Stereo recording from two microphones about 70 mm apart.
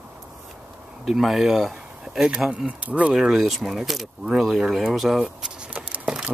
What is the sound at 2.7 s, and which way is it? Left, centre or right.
Speech, right.